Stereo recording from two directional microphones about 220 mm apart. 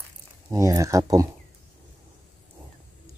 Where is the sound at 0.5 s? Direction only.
15° right (ahead or behind).